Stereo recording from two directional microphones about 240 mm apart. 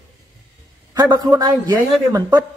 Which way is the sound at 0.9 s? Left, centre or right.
Centre.